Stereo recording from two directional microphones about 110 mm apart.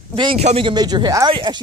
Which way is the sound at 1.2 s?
50° right (ahead or behind).